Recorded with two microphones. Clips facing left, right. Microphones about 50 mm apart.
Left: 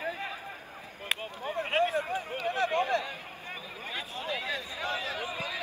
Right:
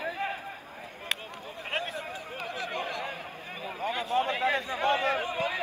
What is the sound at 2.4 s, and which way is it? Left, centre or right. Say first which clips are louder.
Speech: left 5 dB; left.